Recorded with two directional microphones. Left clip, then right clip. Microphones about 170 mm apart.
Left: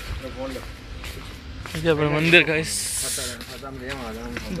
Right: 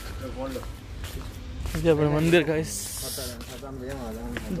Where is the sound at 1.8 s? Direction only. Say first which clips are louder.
Left 1 dB; 25° right (ahead or behind).